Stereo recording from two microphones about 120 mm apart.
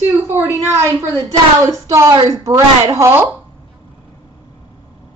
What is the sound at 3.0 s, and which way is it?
Speech, 20° right (ahead or behind).